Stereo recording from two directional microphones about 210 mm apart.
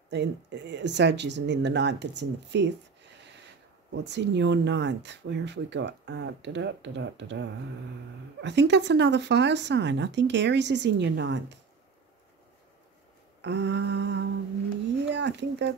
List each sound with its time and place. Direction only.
0.1 s speech: 55° right (ahead or behind)
3.9 s speech: 55° right (ahead or behind)
13.4 s speech: 55° right (ahead or behind)